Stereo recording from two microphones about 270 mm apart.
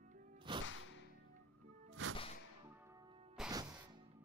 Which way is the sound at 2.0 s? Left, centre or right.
Right.